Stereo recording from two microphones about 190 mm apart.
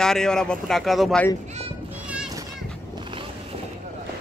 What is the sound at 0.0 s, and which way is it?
Speech, 5° left (ahead or behind).